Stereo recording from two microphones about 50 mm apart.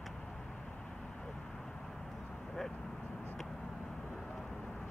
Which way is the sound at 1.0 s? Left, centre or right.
Centre.